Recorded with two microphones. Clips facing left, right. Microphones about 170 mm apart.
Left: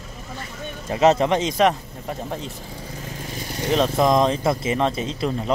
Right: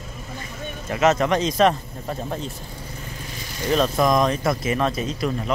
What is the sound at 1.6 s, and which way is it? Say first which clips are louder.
Speech: right 1 dB; 10° left (ahead or behind).